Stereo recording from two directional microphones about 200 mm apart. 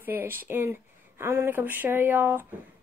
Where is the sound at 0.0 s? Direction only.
10° right (ahead or behind).